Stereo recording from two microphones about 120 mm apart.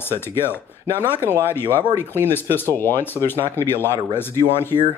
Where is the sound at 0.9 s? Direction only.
20° left (ahead or behind).